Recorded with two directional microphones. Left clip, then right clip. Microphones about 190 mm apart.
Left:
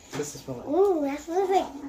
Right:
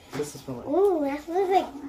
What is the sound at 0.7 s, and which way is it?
Speech, centre (ahead or behind).